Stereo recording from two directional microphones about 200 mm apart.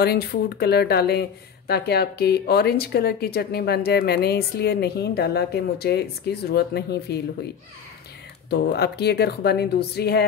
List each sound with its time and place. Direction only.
0.0 s speech: 50° left (ahead or behind)
8.5 s speech: 55° left (ahead or behind)